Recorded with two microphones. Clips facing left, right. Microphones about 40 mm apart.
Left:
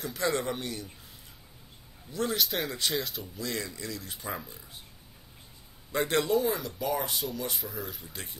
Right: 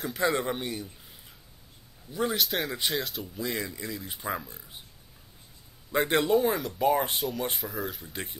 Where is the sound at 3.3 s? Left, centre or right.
Centre.